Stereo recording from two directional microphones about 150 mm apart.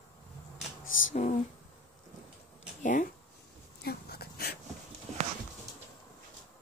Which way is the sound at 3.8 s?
90° left.